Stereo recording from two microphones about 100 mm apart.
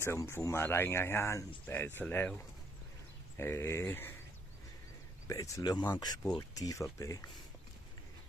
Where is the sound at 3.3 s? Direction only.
25° left (ahead or behind).